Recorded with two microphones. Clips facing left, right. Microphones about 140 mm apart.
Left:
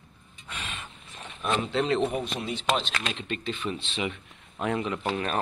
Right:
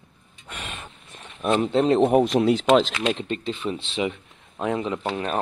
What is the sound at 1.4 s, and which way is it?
Speech, 45° right (ahead or behind).